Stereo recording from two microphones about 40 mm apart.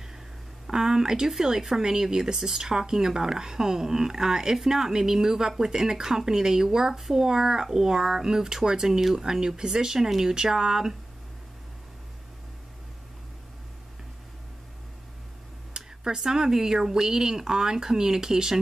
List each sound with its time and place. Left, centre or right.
0.7 s speech: centre
15.7 s a sound: right
16.2 s speech: centre